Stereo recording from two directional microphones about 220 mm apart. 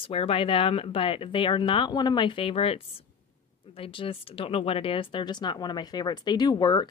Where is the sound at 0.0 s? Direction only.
25° left (ahead or behind).